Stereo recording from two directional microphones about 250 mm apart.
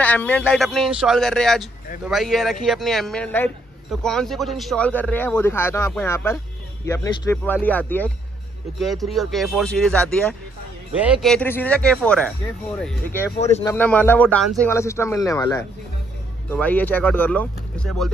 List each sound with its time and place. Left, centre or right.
0.0 s a man's voice: centre
13.4 s speech: left
13.7 s a man's voice: centre